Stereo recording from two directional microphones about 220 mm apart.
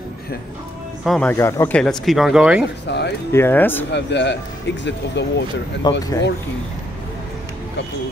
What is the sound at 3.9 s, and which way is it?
Speech, 50° left (ahead or behind).